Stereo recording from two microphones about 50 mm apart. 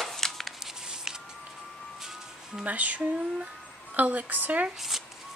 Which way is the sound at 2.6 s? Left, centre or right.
Right.